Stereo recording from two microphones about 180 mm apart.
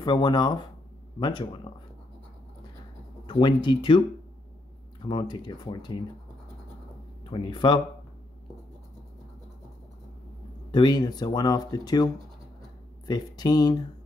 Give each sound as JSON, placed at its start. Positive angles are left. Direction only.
{"t": 0.0, "sound": "speech", "side_deg": 25}
{"t": 3.3, "sound": "speech", "side_deg": 25}
{"t": 5.0, "sound": "speech", "side_deg": 25}
{"t": 7.2, "sound": "speech", "side_deg": 25}
{"t": 10.7, "sound": "speech", "side_deg": 25}